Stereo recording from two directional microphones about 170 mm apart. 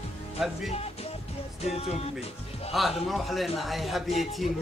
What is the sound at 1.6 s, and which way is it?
Speech, 35° left (ahead or behind).